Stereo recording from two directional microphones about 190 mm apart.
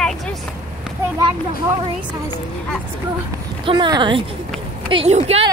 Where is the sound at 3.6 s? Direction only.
25° right (ahead or behind).